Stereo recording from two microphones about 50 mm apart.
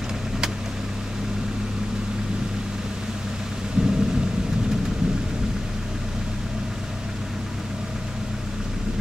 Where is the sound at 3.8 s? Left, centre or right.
Centre.